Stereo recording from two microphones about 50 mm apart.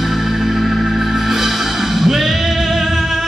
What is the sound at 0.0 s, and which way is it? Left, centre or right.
Music, centre.